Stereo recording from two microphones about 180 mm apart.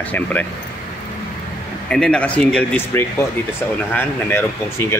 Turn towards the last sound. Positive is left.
turn(degrees=15)  # may be behind; listen again after turning